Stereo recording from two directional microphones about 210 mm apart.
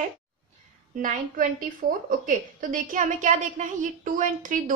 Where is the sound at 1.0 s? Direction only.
40° right (ahead or behind).